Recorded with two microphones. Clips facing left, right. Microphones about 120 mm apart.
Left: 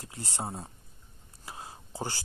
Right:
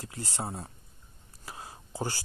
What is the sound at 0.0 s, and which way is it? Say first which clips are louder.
Speech: right 1 dB; 25° left (ahead or behind).